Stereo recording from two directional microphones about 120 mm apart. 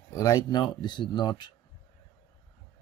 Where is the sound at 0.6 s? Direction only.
40° left (ahead or behind).